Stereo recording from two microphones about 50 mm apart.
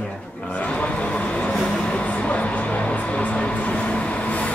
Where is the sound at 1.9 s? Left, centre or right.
Left.